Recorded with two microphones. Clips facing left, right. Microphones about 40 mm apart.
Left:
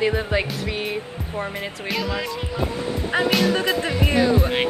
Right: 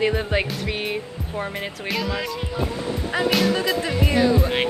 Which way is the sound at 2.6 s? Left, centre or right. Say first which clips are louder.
Left 1 dB; left.